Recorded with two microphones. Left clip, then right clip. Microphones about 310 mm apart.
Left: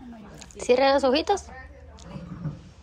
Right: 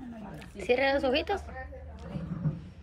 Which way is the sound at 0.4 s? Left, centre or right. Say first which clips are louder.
Left 6 dB; centre.